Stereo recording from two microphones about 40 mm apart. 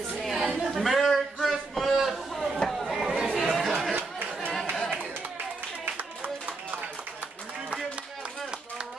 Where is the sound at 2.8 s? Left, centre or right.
Centre.